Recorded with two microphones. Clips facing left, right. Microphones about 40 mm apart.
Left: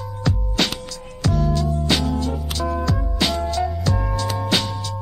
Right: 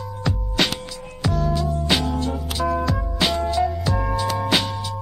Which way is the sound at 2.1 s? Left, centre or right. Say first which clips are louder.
Left 1 dB; right.